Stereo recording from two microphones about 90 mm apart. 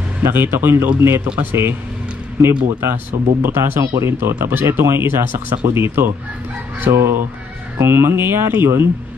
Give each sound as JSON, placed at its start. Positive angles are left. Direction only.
{"t": 0.2, "sound": "speech", "side_deg": -25}
{"t": 2.8, "sound": "speech", "side_deg": -25}